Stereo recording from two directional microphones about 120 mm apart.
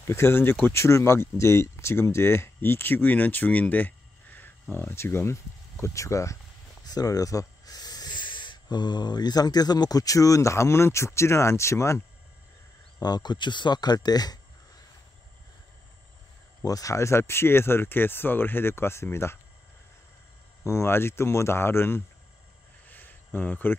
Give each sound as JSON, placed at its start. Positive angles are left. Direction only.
{"t": 0.0, "sound": "speech", "side_deg": 20}
{"t": 13.0, "sound": "speech", "side_deg": 35}
{"t": 16.6, "sound": "speech", "side_deg": 30}
{"t": 20.6, "sound": "speech", "side_deg": 20}
{"t": 22.8, "sound": "a sound", "side_deg": 15}